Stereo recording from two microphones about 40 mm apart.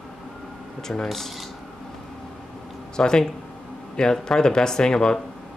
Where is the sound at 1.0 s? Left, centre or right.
Centre.